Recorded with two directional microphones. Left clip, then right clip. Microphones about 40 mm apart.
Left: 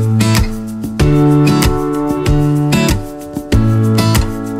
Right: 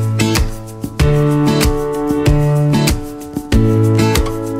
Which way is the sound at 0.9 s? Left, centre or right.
Centre.